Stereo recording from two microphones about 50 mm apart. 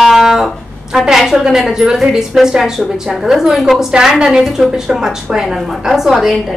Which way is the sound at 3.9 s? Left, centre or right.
Centre.